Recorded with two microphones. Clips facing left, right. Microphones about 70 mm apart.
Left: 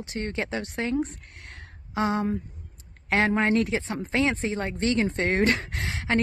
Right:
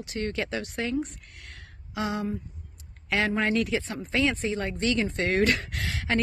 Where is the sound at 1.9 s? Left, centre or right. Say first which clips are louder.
Left 4 dB; left.